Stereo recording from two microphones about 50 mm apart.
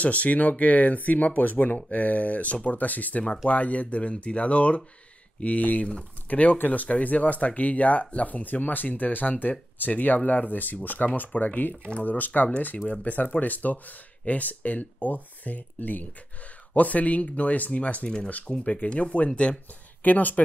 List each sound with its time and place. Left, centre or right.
0.0 s speech: left